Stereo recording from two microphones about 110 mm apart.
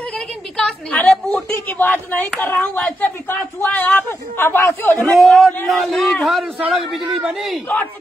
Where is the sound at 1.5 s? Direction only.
20° left (ahead or behind).